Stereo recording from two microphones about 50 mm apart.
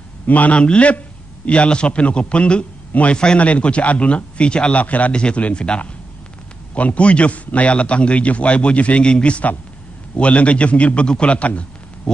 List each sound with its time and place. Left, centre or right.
0.3 s a man's voice: left